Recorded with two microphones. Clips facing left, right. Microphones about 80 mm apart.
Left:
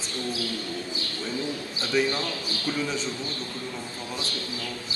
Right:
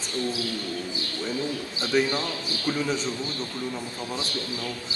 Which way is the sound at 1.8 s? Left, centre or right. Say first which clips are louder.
Right 1 dB; right.